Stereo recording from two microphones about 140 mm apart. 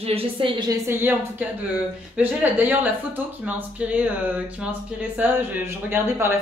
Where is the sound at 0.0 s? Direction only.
45° right (ahead or behind).